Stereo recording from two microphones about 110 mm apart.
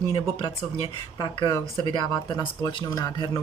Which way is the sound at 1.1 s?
40° left (ahead or behind).